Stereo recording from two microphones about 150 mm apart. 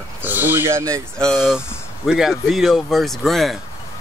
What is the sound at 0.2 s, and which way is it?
Speech, 15° right (ahead or behind).